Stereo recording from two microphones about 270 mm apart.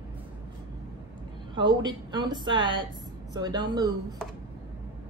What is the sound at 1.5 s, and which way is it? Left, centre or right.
A woman's voice, centre.